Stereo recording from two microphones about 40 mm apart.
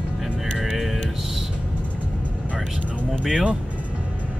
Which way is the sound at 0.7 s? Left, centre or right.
Centre.